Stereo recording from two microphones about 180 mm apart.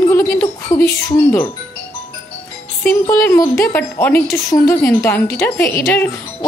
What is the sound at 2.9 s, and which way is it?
Speech, 15° left (ahead or behind).